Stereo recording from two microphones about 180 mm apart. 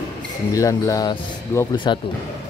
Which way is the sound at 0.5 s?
20° left (ahead or behind).